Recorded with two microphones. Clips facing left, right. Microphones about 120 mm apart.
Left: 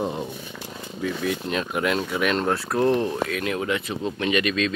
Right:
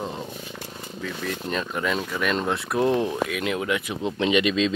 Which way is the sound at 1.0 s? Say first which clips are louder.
Left 5 dB; 5° left (ahead or behind).